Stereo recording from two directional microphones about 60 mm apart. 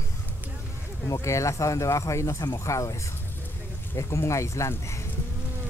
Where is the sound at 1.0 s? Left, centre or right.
Left.